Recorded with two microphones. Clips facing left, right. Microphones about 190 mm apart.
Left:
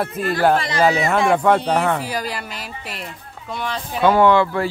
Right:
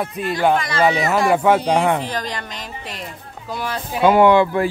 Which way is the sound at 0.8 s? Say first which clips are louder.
Even; centre (ahead or behind).